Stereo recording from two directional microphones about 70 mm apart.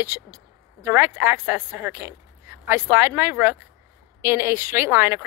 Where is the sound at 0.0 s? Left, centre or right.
Right.